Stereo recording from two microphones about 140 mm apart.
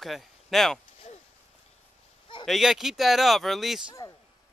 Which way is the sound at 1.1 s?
50° left (ahead or behind).